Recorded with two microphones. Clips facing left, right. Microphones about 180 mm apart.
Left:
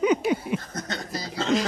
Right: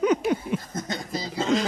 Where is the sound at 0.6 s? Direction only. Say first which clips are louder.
Right 1 dB; 10° right (ahead or behind).